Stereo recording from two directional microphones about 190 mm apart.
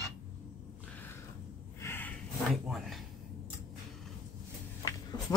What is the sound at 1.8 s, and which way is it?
Snort, 10° left (ahead or behind).